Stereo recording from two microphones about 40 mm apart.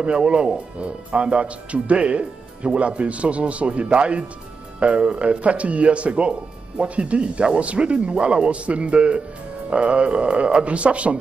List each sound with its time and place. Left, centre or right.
0.0 s speech: right